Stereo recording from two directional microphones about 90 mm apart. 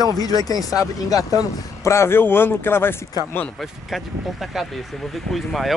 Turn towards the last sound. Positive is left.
turn(degrees=0)  # may be behind; listen again after turning